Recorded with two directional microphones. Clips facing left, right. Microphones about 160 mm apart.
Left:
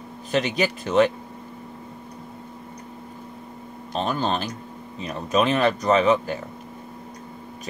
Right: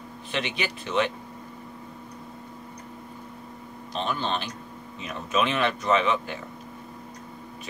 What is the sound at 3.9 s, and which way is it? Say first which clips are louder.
Speech: left 4 dB; 40° left (ahead or behind).